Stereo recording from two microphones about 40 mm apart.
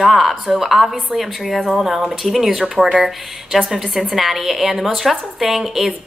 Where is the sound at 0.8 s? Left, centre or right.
Right.